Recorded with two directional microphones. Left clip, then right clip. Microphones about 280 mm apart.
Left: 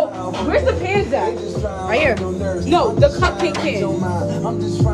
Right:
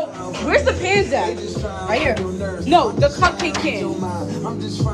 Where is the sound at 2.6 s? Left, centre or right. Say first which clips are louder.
Even; right.